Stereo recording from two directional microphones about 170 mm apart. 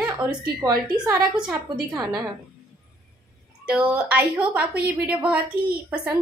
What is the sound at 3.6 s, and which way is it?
A woman's voice, 5° right (ahead or behind).